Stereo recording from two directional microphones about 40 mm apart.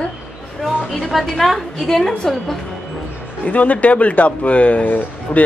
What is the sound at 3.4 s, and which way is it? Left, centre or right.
Speech, left.